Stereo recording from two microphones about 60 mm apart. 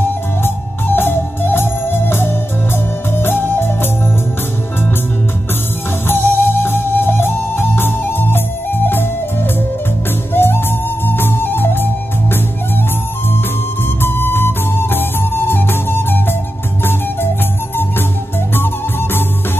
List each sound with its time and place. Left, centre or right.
0.4 s organ: left
3.2 s music: left
6.0 s music: left
10.3 s music: left
14.0 s music: left